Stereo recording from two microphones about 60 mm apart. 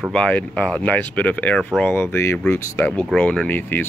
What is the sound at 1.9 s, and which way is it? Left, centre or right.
Speech, left.